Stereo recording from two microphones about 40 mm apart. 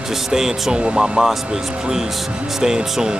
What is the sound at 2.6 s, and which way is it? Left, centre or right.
Speech, centre.